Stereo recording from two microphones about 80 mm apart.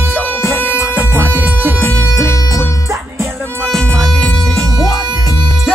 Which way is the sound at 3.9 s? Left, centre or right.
Centre.